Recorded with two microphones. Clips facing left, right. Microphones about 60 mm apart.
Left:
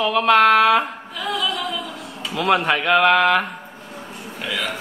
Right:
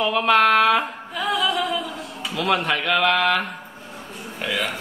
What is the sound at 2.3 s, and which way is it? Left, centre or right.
Speech, centre.